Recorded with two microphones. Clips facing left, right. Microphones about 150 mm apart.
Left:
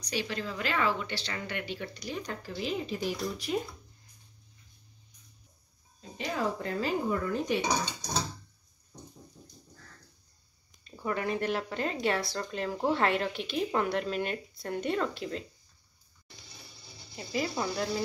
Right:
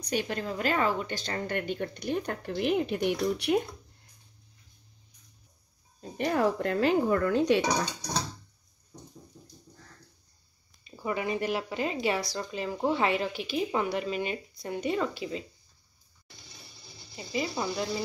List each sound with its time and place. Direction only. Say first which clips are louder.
0.0 s a woman's voice: right 3 dB; 50° right (ahead or behind); by 3.6 s 65° right (ahead or behind)
5.9 s speech: right 6 dB; 55° right (ahead or behind); by 7.6 s 80° right
10.8 s speech: right 1 dB; 5° right (ahead or behind)
17.1 s speech: even; centre (ahead or behind)